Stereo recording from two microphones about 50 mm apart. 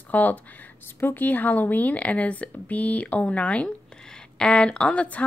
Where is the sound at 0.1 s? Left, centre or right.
Left.